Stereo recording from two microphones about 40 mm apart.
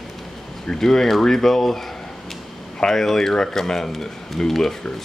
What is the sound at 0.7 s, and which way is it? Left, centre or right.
Speech, centre.